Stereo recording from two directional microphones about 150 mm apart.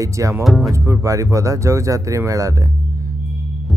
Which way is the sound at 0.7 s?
20° right (ahead or behind).